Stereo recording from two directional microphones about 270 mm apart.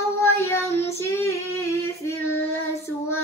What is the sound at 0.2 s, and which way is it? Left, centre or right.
Child singing, centre.